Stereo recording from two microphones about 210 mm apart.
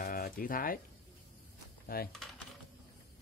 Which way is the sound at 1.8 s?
45° left (ahead or behind).